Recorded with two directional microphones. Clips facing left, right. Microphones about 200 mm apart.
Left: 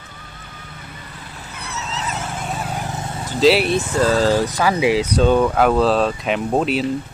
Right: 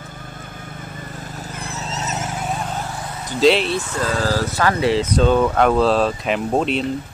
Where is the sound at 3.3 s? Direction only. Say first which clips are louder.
Left 1 dB; centre (ahead or behind).